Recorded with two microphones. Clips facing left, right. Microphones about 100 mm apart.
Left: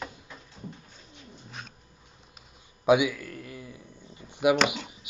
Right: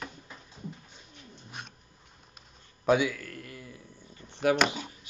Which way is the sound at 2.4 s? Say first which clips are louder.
Left 1 dB; 15° left (ahead or behind).